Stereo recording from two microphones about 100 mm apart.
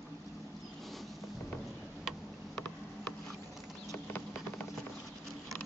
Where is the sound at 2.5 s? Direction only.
10° left (ahead or behind).